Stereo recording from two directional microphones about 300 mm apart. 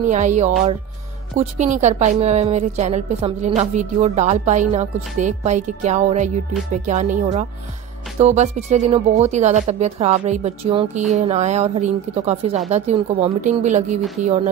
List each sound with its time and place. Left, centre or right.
0.0 s speech: right